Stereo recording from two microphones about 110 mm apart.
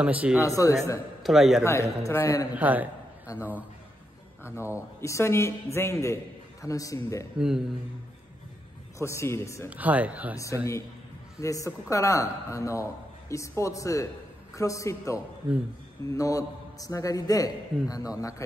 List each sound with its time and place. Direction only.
0.0 s speech: 10° right (ahead or behind)
0.4 s a woman's voice: 30° left (ahead or behind)
1.2 s a man's voice: centre (ahead or behind)
1.6 s a woman's voice: 25° left (ahead or behind)
2.5 s speech: 15° right (ahead or behind)
4.4 s a woman's voice: 25° left (ahead or behind)
7.3 s a man's voice: 5° right (ahead or behind)
8.9 s a woman's voice: 25° left (ahead or behind)
9.7 s speech: 15° right (ahead or behind)
10.3 s a woman's voice: 30° left (ahead or behind)